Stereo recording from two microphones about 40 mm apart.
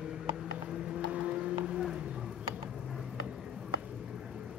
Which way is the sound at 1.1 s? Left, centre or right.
Right.